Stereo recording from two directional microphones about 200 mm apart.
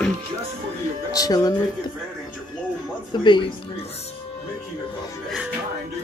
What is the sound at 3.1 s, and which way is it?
Speech, 20° left (ahead or behind).